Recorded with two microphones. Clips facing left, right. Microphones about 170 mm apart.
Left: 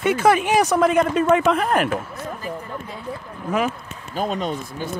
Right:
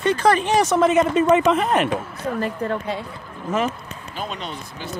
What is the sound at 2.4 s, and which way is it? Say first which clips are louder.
Speech: right 6 dB; 70° right (ahead or behind).